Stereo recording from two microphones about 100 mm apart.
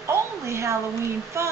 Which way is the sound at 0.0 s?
30° right (ahead or behind).